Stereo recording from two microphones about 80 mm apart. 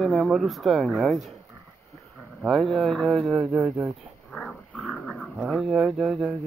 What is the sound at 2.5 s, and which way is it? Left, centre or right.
Speech, centre.